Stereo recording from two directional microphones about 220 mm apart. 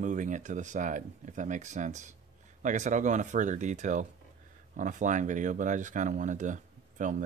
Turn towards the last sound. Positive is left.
turn(degrees=-35)  # may be behind; listen again after turning